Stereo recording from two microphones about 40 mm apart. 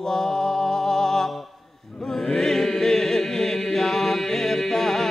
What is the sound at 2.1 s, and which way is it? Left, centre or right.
Chant, centre.